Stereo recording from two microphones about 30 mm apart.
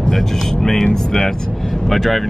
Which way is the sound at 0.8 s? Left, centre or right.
Centre.